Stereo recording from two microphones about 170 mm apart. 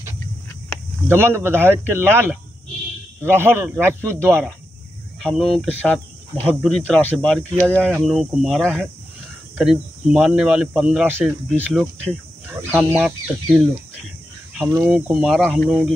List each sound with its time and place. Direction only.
1.0 s speech: 15° right (ahead or behind)
5.2 s speech: centre (ahead or behind)
14.8 s speech: 5° right (ahead or behind)